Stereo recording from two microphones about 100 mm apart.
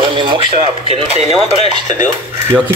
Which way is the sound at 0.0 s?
55° right (ahead or behind).